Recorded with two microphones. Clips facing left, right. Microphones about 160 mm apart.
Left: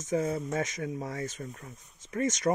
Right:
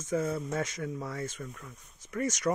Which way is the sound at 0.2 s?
45° left (ahead or behind).